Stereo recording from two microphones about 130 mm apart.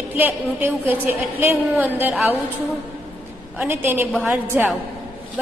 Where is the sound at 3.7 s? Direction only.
15° right (ahead or behind).